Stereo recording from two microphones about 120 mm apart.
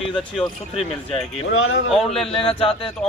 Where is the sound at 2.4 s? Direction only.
50° left (ahead or behind).